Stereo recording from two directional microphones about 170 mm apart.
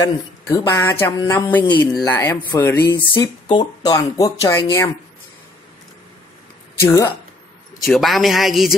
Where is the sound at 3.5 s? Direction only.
25° left (ahead or behind).